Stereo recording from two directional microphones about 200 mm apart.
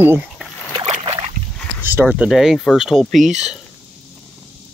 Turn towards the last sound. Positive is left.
turn(degrees=0)  # may be behind; listen again after turning